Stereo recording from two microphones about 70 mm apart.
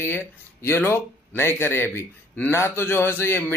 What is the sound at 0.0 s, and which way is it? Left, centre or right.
Speech, left.